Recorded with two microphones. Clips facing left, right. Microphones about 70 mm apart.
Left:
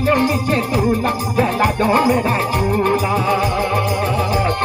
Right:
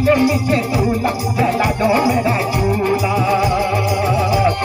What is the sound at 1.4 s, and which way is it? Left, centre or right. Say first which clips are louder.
Music: right 1 dB; left.